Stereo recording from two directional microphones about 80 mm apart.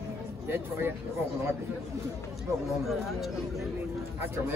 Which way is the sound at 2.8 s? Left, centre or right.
Centre.